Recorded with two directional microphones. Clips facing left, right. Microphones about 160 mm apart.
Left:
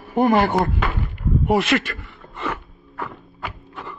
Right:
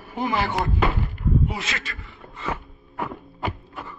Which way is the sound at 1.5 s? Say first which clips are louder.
Left 13 dB; 65° left (ahead or behind).